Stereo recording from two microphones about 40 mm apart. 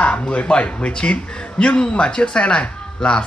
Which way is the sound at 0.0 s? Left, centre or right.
Left.